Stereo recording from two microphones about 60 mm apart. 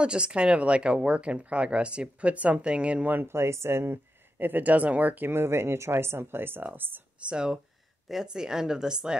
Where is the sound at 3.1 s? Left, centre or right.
Right.